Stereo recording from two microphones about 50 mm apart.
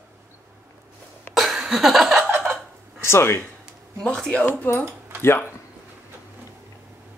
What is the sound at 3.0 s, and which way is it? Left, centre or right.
Speech, left.